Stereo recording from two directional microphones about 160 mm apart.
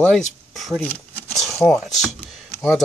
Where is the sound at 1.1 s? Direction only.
20° right (ahead or behind).